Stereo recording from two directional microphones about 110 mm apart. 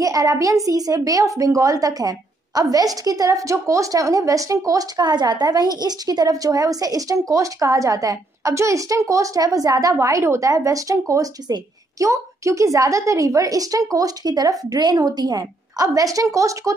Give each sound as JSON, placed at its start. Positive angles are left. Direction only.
{"t": 0.0, "sound": "a child's voice", "side_deg": -30}